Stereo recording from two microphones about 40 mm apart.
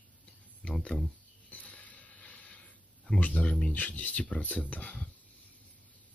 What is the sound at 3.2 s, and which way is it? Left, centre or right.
Speech, left.